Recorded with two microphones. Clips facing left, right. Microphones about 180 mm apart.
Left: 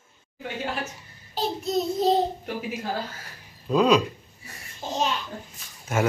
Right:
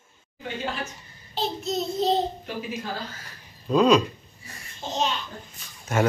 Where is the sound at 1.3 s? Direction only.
10° left (ahead or behind).